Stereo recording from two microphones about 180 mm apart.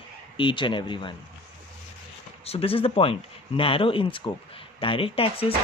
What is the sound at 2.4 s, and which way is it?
Speech, 30° left (ahead or behind).